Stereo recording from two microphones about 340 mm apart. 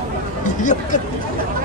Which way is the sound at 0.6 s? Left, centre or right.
Left.